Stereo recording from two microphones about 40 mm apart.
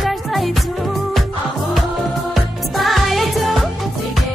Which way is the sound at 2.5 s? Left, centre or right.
Centre.